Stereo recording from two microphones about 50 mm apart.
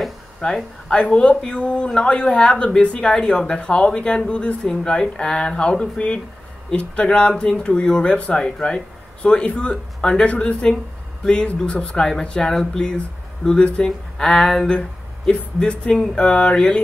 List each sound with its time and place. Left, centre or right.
0.4 s speech: centre